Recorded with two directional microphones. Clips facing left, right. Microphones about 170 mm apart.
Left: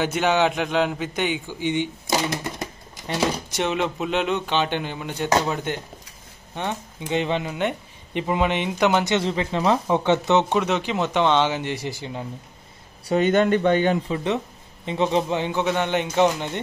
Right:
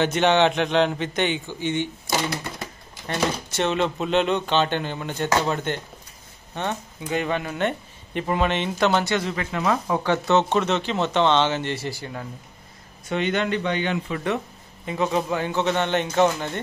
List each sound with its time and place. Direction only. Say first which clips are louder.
0.0 s speech: right 2 dB; 10° left (ahead or behind)
13.0 s a man's voice: left 5 dB; 40° left (ahead or behind)
14.0 s speech: left 2 dB; 20° left (ahead or behind)